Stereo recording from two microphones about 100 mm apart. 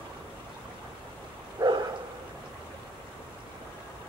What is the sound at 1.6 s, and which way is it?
Dog, 50° right (ahead or behind).